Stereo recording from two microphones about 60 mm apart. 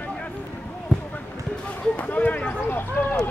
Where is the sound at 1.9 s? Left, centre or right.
Left.